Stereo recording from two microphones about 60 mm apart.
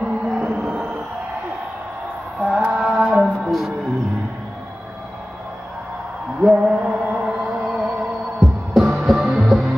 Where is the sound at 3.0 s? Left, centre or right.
Centre.